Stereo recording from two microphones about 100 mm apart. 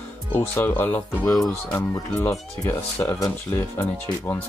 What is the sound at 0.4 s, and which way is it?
Speech, 20° left (ahead or behind).